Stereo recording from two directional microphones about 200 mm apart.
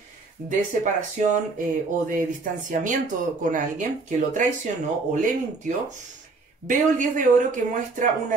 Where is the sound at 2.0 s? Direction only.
40° right (ahead or behind).